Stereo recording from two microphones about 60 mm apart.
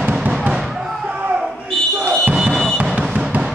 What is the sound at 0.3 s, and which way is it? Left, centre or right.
Fireworks, centre.